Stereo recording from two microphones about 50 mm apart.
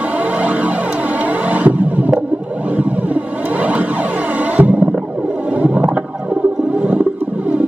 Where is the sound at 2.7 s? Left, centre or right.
Right.